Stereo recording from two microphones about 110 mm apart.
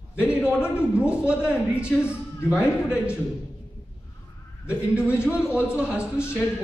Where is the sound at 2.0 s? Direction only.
20° left (ahead or behind).